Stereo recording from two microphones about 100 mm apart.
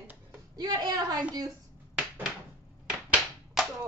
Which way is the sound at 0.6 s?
40° right (ahead or behind).